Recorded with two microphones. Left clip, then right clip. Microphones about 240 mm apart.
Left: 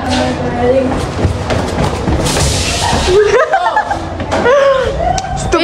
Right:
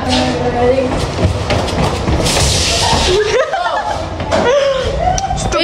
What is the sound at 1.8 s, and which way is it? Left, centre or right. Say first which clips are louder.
Music: even; centre.